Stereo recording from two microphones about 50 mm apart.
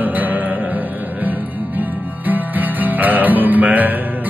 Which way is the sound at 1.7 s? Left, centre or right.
Right.